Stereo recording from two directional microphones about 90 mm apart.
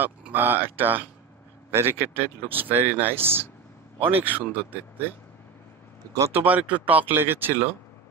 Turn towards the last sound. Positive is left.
turn(degrees=-25)  # may be behind; listen again after turning